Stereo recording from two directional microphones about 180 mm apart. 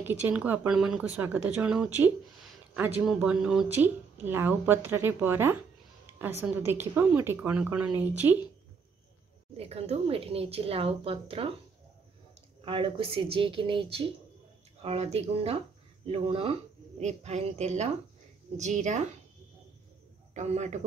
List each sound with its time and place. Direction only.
0.0 s speech: 10° right (ahead or behind)
9.6 s speech: 35° right (ahead or behind)
12.6 s speech: 30° right (ahead or behind)
20.3 s speech: 40° right (ahead or behind)